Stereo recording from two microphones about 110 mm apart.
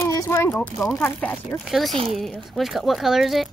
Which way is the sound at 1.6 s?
Centre (ahead or behind).